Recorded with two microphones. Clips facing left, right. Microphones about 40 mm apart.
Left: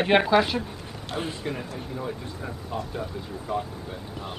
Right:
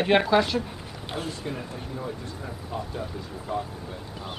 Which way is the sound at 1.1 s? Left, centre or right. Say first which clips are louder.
Left 2 dB; left.